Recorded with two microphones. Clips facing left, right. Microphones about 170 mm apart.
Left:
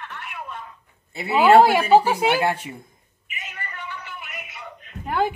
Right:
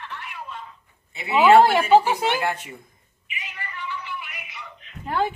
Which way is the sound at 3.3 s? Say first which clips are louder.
Even; 45° left (ahead or behind).